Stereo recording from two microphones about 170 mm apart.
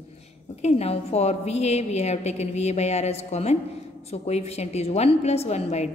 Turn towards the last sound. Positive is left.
turn(degrees=40)  # may be behind; listen again after turning